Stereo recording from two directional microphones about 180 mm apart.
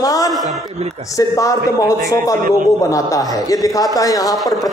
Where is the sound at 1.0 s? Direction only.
20° left (ahead or behind).